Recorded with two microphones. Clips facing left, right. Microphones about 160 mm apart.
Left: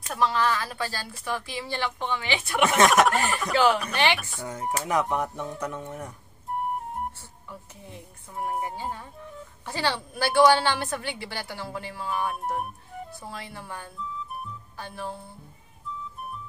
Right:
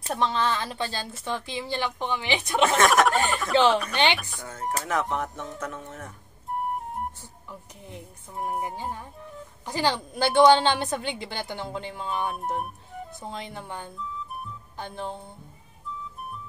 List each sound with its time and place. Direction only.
0.0 s a woman's voice: 25° right (ahead or behind)
2.9 s speech: centre (ahead or behind)
3.5 s a woman's voice: 25° right (ahead or behind)
4.5 s speech: 15° left (ahead or behind)
8.4 s speech: centre (ahead or behind)
9.7 s a woman's voice: 15° right (ahead or behind)